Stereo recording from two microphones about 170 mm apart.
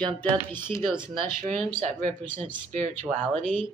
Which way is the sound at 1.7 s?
40° right (ahead or behind).